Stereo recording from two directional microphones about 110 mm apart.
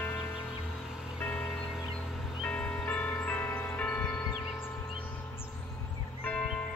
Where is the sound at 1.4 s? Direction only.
5° left (ahead or behind).